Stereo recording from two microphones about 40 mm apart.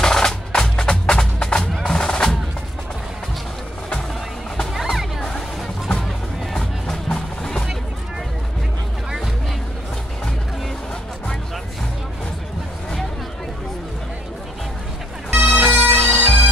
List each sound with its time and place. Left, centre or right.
0.0 s music: centre
4.7 s music: centre
6.6 s music: centre
15.3 s bagpipes: right